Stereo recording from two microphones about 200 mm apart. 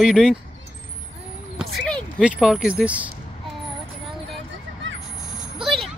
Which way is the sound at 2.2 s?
5° right (ahead or behind).